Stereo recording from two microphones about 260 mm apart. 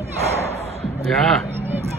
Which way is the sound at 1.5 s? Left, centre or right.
Centre.